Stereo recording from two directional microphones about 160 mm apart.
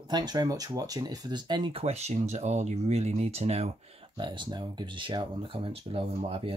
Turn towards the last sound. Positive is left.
turn(degrees=-35)  # may be behind; listen again after turning